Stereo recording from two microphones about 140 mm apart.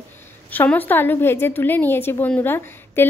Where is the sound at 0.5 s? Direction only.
10° left (ahead or behind).